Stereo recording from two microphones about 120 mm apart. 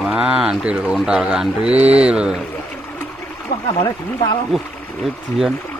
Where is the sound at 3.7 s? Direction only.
40° left (ahead or behind).